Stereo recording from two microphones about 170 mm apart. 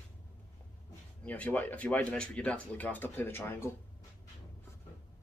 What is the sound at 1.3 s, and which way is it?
Speech, 10° left (ahead or behind).